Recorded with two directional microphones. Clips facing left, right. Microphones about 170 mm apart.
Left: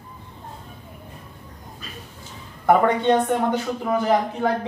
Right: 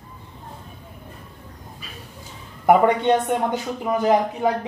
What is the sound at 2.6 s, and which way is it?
A man's voice, 15° right (ahead or behind).